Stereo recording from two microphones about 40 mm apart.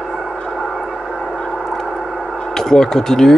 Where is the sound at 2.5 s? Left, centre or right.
Centre.